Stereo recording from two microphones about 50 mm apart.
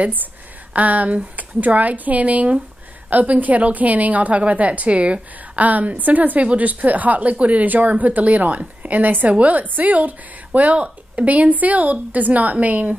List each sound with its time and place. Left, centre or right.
0.7 s a woman's voice: right